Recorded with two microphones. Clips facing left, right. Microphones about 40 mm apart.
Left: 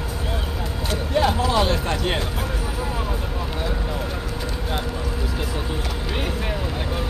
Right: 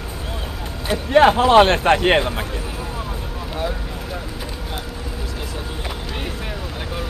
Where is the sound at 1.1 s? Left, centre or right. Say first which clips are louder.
Right 9 dB; right.